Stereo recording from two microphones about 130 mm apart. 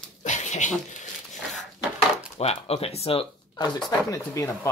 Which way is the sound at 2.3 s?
50° left (ahead or behind).